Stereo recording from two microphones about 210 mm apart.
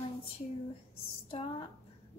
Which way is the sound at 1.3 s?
25° left (ahead or behind).